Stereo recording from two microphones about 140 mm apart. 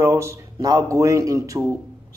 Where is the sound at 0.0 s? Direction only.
20° right (ahead or behind).